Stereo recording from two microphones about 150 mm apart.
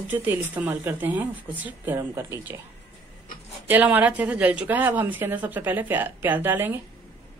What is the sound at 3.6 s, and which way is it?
A woman's voice, 10° right (ahead or behind).